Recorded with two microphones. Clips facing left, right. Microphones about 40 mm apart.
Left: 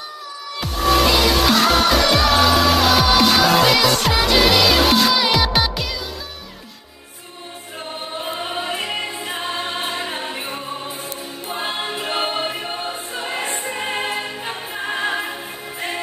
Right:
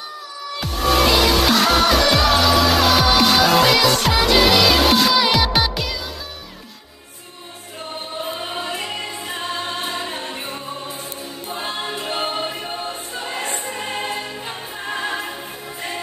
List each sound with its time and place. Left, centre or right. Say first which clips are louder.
0.6 s music: left 1 dB; centre
8.2 s choir: left 1 dB; centre
8.6 s music: left 2 dB; centre
11.4 s choir: left 2 dB; centre